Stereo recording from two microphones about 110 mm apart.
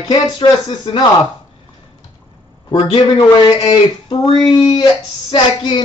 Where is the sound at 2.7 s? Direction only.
45° left (ahead or behind).